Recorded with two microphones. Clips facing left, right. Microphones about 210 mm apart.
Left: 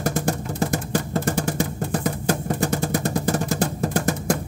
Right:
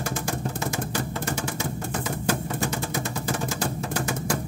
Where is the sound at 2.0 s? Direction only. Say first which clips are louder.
Left 3 dB; 40° left (ahead or behind).